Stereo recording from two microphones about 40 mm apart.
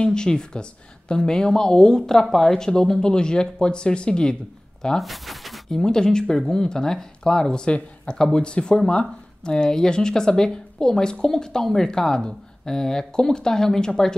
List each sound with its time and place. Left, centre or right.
0.0 s a woman's voice: centre
4.9 s speech: centre
5.7 s speech: centre